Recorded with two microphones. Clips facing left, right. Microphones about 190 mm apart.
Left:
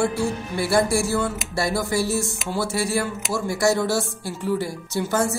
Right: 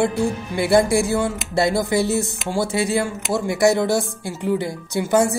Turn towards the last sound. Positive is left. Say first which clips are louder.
# right 5 dB
turn(degrees=-15)  # may be behind; listen again after turning